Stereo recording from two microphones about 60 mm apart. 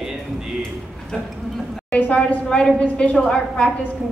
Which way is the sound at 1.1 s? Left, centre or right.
Centre.